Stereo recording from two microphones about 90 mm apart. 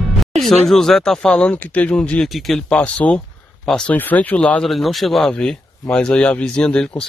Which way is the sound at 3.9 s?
20° left (ahead or behind).